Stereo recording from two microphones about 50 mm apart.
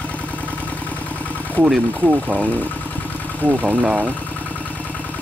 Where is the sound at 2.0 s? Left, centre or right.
Right.